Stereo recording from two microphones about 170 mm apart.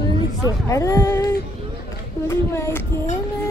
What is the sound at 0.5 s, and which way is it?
A woman's voice, 20° left (ahead or behind).